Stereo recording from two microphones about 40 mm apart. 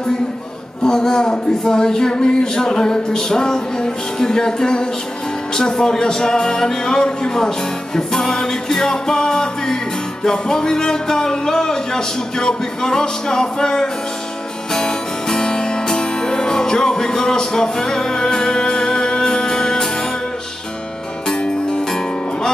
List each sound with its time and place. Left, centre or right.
0.8 s speech: centre
14.7 s music: centre
21.4 s music: left